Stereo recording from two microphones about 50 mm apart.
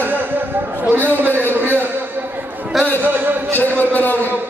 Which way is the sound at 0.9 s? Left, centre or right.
Right.